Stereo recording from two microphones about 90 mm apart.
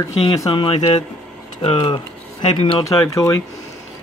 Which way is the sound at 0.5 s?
65° left (ahead or behind).